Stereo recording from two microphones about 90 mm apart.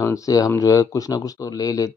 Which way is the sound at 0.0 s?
35° left (ahead or behind).